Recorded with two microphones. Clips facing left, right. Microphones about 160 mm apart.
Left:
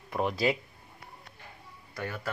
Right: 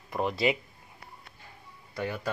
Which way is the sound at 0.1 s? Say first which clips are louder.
Even; centre (ahead or behind).